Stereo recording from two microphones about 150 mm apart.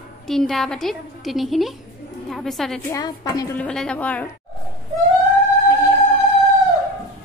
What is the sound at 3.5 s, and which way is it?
Speech, 5° left (ahead or behind).